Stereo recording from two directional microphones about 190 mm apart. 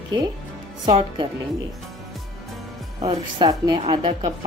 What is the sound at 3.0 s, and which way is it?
A woman's voice, 25° right (ahead or behind).